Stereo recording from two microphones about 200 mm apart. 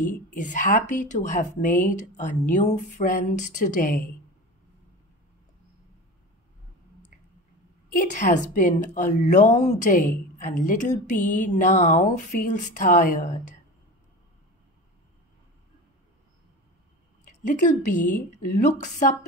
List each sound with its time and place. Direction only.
0.0 s a woman's voice: 40° left (ahead or behind)
7.9 s a woman's voice: 40° left (ahead or behind)
17.2 s a woman's voice: 40° left (ahead or behind)